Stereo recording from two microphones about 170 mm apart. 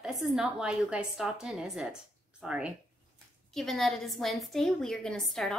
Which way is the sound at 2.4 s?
5° right (ahead or behind).